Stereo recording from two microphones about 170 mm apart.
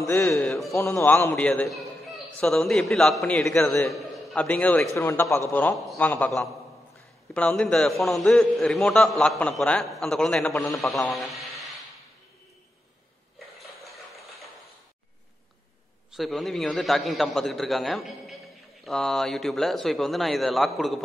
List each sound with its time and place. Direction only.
0.0 s a man's voice: 15° left (ahead or behind)
0.4 s a man's voice: 5° left (ahead or behind)
0.7 s a man's voice: 15° left (ahead or behind)
1.3 s a man's voice: 5° left (ahead or behind)
13.6 s a sound: centre (ahead or behind)
16.1 s a man's voice: centre (ahead or behind)